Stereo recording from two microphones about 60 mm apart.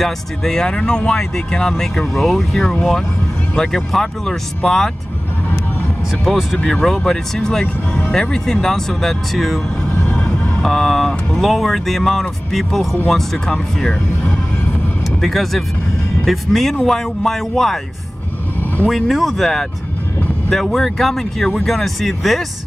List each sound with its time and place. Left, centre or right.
0.0 s speech: centre
6.2 s speech: centre
6.6 s speech: centre
7.6 s speech: left
8.1 s speech: centre
10.1 s music: left
10.6 s speech: centre
15.2 s speech: centre
18.9 s speech: centre